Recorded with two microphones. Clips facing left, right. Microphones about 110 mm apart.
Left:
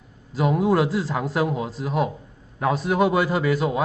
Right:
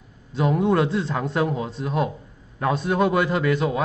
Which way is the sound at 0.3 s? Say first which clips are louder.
Even; 5° left (ahead or behind).